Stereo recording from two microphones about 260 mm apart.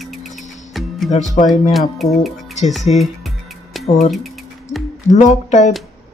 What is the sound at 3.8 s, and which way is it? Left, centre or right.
Speech, left.